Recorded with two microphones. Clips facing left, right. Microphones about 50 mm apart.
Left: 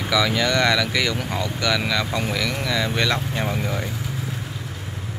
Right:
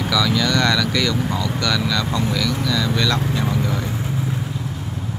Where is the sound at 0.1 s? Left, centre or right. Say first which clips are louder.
Even; left.